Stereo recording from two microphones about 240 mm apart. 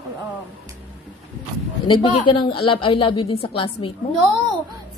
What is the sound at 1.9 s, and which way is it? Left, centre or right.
A woman's voice, left.